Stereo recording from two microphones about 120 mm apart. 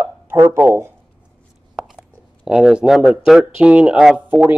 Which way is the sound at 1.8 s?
5° right (ahead or behind).